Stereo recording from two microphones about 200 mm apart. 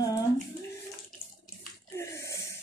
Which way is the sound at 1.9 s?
15° left (ahead or behind).